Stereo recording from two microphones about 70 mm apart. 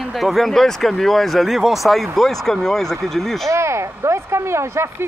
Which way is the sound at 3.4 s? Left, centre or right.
Right.